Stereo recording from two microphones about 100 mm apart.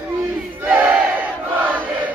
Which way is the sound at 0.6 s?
15° right (ahead or behind).